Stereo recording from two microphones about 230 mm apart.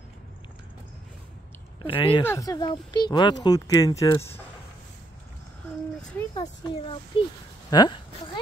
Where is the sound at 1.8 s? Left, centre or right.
Left.